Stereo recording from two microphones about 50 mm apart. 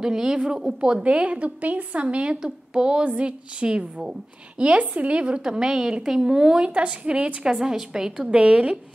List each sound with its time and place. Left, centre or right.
0.0 s a woman's voice: centre
7.4 s a woman's voice: centre